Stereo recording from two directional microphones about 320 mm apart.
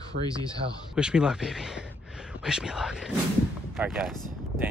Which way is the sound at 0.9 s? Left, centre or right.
Centre.